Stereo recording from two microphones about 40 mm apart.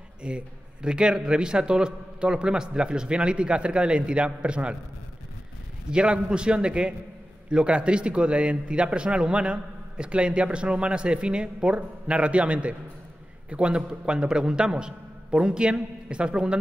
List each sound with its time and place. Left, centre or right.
0.2 s a man's voice: right
5.9 s a man's voice: right